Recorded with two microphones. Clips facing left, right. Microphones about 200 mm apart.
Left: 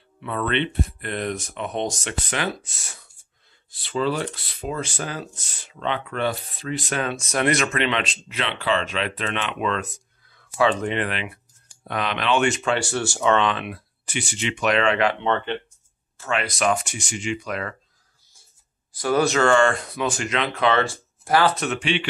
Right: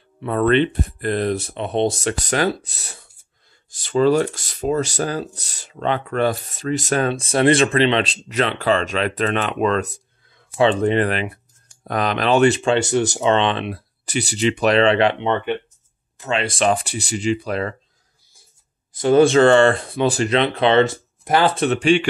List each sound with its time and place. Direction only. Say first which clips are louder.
0.2 s speech: right 8 dB; 40° right (ahead or behind)
2.0 s speech: right 7 dB; 40° right (ahead or behind)
15.1 s speech: right 3 dB; 15° right (ahead or behind)
16.2 s speech: right 4 dB; 25° right (ahead or behind)
18.9 s speech: right 7 dB; 25° right (ahead or behind)